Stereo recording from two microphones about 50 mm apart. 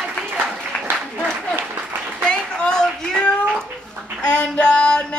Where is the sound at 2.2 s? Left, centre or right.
Centre.